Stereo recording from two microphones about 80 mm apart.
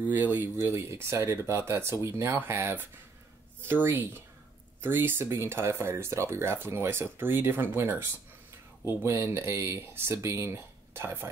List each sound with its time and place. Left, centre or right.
0.0 s speech: right
0.6 s speech: right